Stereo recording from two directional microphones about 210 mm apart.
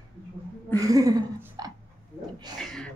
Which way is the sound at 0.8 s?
15° right (ahead or behind).